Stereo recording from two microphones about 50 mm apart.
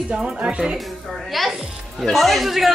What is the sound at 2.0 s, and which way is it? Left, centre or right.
Speech, centre.